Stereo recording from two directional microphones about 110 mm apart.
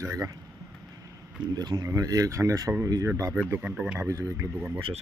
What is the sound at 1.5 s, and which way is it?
Speech, 40° right (ahead or behind).